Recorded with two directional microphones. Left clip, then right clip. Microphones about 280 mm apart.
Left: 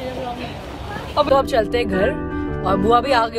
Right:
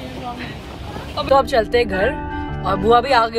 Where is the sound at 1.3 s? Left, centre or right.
Centre.